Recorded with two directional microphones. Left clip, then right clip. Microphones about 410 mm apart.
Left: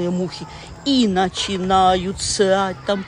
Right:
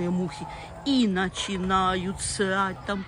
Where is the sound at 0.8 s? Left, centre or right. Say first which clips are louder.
Left 7 dB; centre.